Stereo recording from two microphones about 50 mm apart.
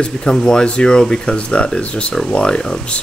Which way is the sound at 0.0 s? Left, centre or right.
Centre.